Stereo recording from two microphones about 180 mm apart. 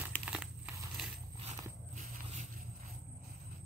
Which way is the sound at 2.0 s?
40° right (ahead or behind).